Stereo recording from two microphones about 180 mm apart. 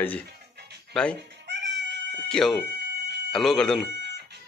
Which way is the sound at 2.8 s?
65° right (ahead or behind).